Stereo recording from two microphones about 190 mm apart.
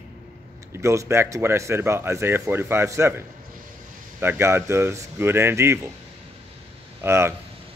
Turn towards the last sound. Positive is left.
turn(degrees=-15)  # may be behind; listen again after turning